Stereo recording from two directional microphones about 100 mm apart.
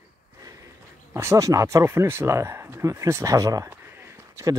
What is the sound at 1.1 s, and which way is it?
Speech, 25° right (ahead or behind).